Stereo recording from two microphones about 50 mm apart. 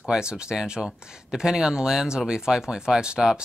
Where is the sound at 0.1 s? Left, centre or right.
Centre.